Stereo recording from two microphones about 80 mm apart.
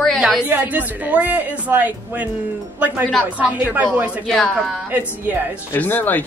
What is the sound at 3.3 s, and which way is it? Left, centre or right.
Speech, centre.